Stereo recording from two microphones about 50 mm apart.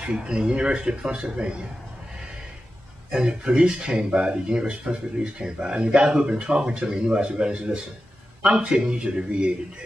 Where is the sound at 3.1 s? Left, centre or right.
Centre.